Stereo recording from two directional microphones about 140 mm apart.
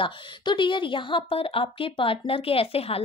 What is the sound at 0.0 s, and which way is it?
A woman's voice, 35° left (ahead or behind).